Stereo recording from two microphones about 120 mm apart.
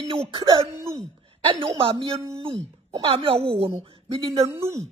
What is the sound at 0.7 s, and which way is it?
Speech, 25° right (ahead or behind).